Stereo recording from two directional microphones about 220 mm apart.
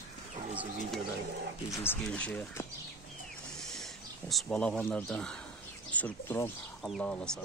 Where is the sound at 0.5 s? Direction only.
5° right (ahead or behind).